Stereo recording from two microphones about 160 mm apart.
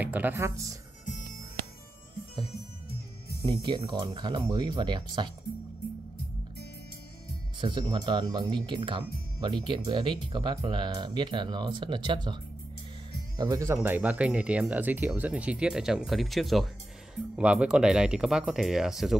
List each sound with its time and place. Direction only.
0.0 s speech: 10° right (ahead or behind)
3.4 s speech: 30° right (ahead or behind)
7.6 s speech: 30° right (ahead or behind)
13.4 s speech: 20° right (ahead or behind); by 19.1 s 5° right (ahead or behind)